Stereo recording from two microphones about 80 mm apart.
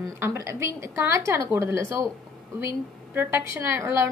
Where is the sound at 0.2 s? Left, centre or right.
Right.